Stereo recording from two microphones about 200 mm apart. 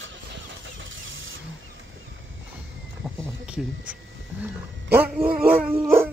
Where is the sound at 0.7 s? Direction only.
75° right (ahead or behind).